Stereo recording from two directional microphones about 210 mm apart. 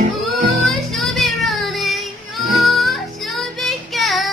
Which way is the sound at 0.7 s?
Centre (ahead or behind).